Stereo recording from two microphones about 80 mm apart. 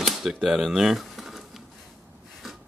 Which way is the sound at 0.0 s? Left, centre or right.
Centre.